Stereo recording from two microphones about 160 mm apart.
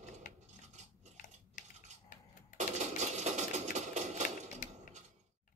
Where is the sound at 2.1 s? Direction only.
55° left (ahead or behind).